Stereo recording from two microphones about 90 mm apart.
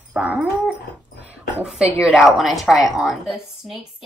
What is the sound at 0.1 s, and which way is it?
Dog, 15° right (ahead or behind).